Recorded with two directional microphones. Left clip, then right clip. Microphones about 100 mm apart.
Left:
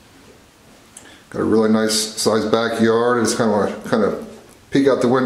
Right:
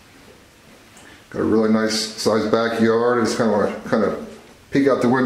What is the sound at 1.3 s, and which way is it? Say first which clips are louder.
Speech: left 2 dB; 15° left (ahead or behind).